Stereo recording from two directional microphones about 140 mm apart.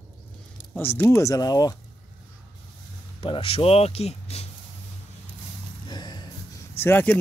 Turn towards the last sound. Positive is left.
turn(degrees=15)  # may be behind; listen again after turning